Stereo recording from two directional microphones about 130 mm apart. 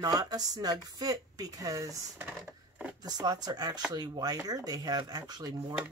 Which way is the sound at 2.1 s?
15° right (ahead or behind).